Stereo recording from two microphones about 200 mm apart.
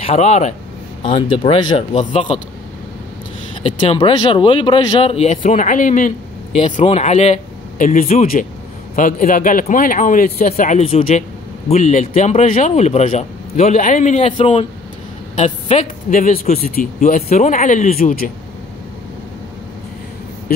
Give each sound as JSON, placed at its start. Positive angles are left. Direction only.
{"t": 0.0, "sound": "speech", "side_deg": 35}
{"t": 3.6, "sound": "speech", "side_deg": 30}